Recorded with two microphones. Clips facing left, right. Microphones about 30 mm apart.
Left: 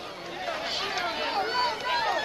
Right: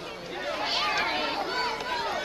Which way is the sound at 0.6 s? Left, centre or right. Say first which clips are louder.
Right 6 dB; right.